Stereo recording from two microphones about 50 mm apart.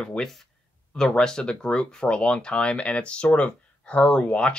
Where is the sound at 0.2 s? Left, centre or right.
Centre.